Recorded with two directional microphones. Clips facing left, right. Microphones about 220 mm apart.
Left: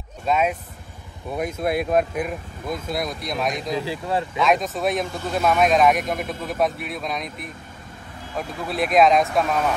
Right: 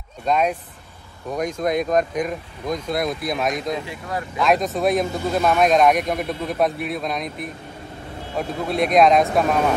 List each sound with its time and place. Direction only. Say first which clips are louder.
0.3 s speech: right 1 dB; 5° left (ahead or behind)
3.8 s speech: left 4 dB; 30° left (ahead or behind)
4.4 s speech: right 4 dB; centre (ahead or behind)